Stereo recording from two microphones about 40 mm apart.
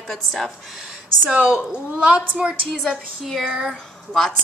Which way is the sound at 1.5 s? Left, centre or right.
Right.